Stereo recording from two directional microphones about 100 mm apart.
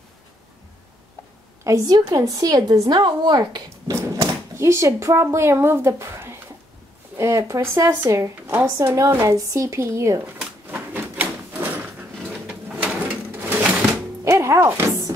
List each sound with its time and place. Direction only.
1.6 s a woman's voice: 35° right (ahead or behind)
3.8 s speech: 30° right (ahead or behind)
10.7 s a sound: 20° right (ahead or behind)
12.6 s bird: 10° right (ahead or behind)
13.3 s a sound: 20° right (ahead or behind)
14.2 s music: 30° right (ahead or behind)